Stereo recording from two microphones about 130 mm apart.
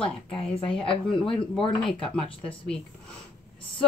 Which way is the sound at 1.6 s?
40° left (ahead or behind).